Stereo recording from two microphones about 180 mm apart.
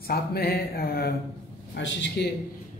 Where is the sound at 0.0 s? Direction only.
60° left (ahead or behind).